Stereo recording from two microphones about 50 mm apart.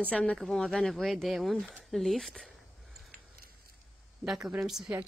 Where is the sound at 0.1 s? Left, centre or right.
Left.